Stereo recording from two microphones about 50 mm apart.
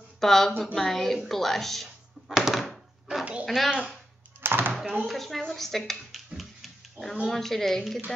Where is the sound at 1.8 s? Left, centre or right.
Centre.